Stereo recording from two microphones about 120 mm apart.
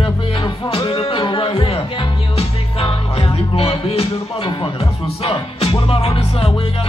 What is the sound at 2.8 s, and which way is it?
Music, 50° left (ahead or behind).